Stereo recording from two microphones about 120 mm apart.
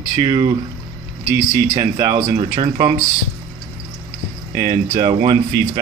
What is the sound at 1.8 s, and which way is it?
Speech, 35° right (ahead or behind).